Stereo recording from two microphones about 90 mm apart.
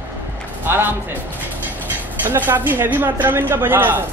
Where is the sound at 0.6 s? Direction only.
25° right (ahead or behind).